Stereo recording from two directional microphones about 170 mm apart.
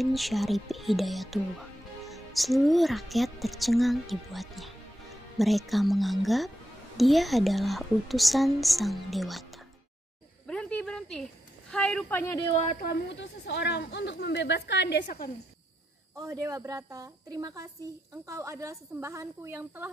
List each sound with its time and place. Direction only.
0.0 s a woman's voice: centre (ahead or behind)
10.4 s a woman's voice: 5° left (ahead or behind)
12.8 s a woman's voice: 90° left
15.0 s speech: 55° left (ahead or behind)
16.2 s a woman's voice: 20° right (ahead or behind)